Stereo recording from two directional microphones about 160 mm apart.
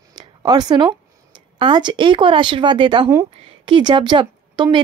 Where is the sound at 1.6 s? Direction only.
30° right (ahead or behind).